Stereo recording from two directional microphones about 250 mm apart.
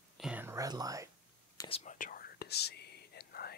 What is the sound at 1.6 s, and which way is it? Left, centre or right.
Whispering, left.